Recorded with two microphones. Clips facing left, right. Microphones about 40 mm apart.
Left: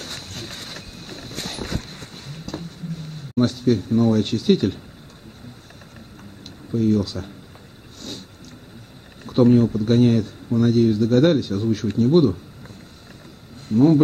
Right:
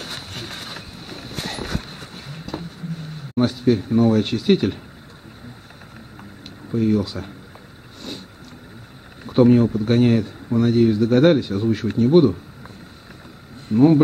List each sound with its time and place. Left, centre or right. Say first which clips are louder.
0.0 s vehicle: right 2 dB; centre
2.1 s a sound: right 1 dB; centre
3.3 s speech: right 1 dB; centre
6.7 s speech: even; centre
9.2 s speech: right 1 dB; centre
13.7 s speech: right 1 dB; centre